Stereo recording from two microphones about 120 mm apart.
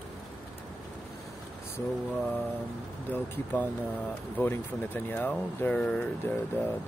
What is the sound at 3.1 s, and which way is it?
Speech, 15° left (ahead or behind).